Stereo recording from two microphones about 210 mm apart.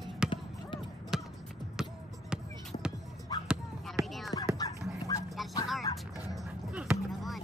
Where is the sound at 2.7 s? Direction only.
30° left (ahead or behind).